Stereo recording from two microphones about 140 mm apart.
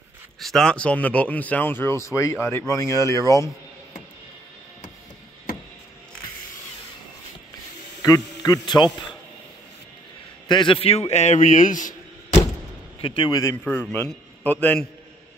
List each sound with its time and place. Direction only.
0.4 s speech: 5° left (ahead or behind); by 3.4 s 25° left (ahead or behind)
8.0 s a man's voice: 25° left (ahead or behind)
10.5 s speech: 35° left (ahead or behind); by 12.4 s 65° left (ahead or behind)
13.0 s a man's voice: 40° left (ahead or behind)
13.3 s speech: 20° left (ahead or behind)
13.7 s speech: 10° left (ahead or behind)